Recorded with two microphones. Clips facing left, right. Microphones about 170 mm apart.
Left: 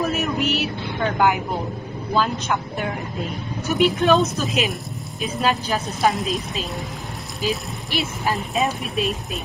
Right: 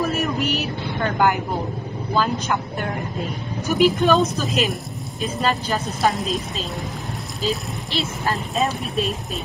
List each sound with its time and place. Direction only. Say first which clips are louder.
0.0 s vehicle: even; 5° left (ahead or behind)
2.1 s speech: even; centre (ahead or behind)
7.4 s speech: even; 20° left (ahead or behind)
8.5 s speech: right 2 dB; centre (ahead or behind)